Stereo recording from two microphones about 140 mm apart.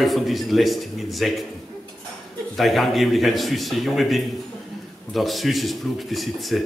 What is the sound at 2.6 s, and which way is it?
A man's voice, centre (ahead or behind).